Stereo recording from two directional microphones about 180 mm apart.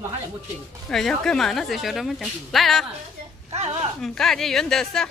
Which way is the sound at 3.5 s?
35° right (ahead or behind).